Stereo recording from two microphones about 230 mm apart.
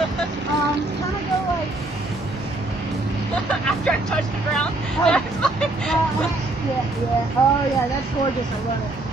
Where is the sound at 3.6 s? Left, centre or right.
Centre.